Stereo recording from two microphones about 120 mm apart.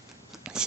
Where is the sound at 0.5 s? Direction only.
5° right (ahead or behind).